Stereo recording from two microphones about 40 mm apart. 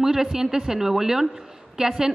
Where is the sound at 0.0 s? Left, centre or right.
Centre.